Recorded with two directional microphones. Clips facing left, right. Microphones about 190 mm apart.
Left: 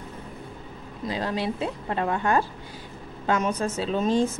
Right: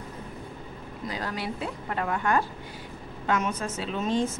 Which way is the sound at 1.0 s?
25° left (ahead or behind).